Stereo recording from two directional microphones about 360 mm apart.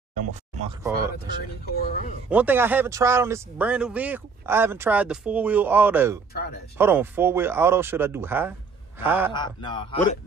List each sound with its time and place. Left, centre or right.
0.6 s speech: centre
1.7 s speech: left
2.2 s a man's voice: centre
9.3 s a man's voice: centre